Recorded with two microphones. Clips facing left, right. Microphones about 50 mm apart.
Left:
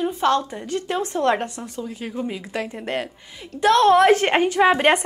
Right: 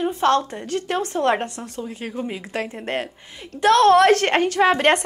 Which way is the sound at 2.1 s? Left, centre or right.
Centre.